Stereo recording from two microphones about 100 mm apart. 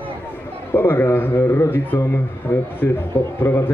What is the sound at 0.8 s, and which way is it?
Speech, 20° left (ahead or behind).